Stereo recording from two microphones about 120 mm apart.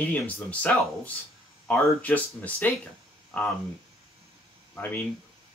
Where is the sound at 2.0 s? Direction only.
15° left (ahead or behind).